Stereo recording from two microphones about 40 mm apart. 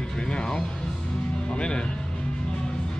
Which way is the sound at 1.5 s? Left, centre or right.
Left.